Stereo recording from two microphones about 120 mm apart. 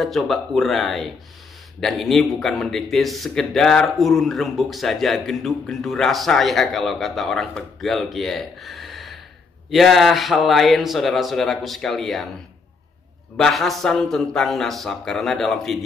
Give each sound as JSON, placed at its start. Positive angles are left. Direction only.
{"t": 0.0, "sound": "a man's voice", "side_deg": 0}
{"t": 13.4, "sound": "a man's voice", "side_deg": 0}